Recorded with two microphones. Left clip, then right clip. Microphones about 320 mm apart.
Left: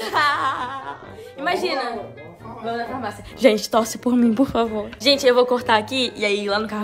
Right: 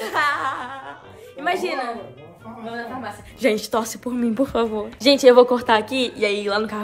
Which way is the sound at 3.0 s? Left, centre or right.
Centre.